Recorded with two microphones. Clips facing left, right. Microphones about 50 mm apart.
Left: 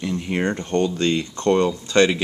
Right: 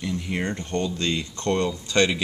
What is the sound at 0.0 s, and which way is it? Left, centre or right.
Speech, centre.